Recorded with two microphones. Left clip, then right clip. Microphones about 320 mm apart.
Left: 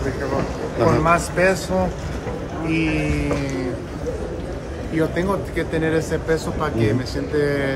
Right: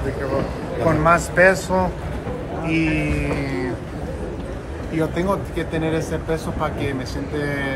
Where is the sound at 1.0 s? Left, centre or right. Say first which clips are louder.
Right 3 dB; centre.